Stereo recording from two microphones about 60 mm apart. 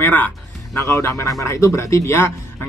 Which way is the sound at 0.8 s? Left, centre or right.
Left.